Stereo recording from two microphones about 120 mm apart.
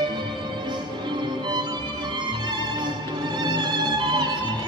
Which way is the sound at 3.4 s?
40° right (ahead or behind).